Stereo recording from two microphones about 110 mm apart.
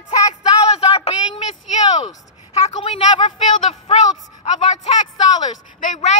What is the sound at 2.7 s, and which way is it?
Speech, 50° left (ahead or behind).